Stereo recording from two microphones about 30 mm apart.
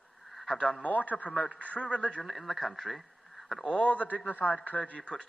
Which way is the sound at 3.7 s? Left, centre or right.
Left.